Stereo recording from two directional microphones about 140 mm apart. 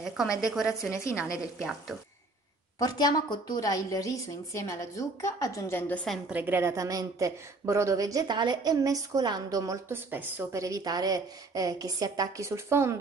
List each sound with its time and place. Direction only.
0.0 s a woman's voice: 5° right (ahead or behind)
2.8 s a woman's voice: 30° left (ahead or behind)
6.3 s speech: 15° right (ahead or behind)